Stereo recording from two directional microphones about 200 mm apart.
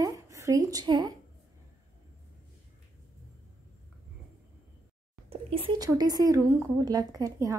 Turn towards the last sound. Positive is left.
turn(degrees=-15)  # may be behind; listen again after turning